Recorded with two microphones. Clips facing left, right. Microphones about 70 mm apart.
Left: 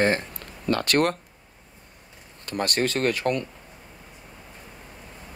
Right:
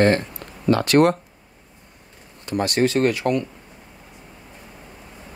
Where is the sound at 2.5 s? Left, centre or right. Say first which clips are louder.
Right 5 dB; left.